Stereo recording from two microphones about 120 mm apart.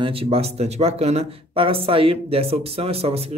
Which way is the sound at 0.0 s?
50° right (ahead or behind).